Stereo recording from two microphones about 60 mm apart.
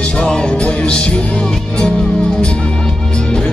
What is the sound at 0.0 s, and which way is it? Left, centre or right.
Music, centre.